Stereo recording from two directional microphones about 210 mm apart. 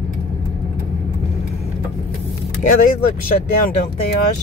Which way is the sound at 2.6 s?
40° left (ahead or behind).